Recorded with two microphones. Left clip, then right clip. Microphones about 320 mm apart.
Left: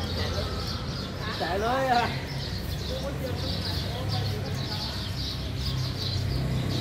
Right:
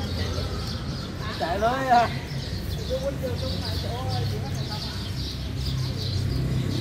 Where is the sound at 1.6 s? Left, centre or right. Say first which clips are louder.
Right 5 dB; centre.